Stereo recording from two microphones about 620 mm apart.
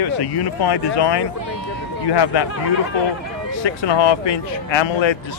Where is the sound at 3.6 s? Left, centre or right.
Left.